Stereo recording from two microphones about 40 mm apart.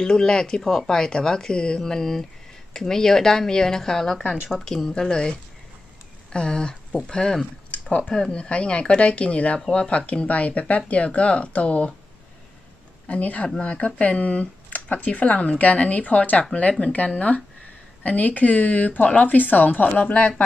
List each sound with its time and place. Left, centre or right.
0.0 s a woman's voice: centre
0.8 s a woman's voice: centre
6.3 s a woman's voice: left
8.4 s speech: left
13.1 s speech: left